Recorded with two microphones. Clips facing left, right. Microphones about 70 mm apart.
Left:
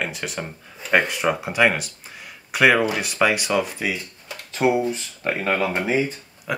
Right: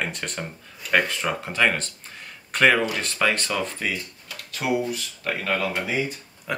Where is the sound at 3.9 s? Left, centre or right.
Left.